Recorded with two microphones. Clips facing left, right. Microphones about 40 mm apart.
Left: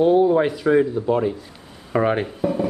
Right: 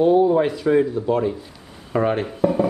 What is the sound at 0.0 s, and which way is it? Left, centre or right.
Speech, centre.